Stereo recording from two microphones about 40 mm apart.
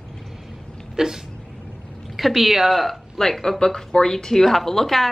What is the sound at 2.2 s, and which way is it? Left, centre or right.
A woman's voice, centre.